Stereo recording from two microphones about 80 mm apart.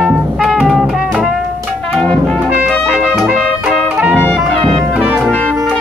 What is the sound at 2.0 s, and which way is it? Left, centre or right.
Brass instrument, centre.